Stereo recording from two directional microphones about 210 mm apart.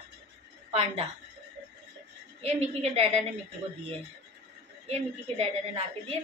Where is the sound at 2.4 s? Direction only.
30° right (ahead or behind).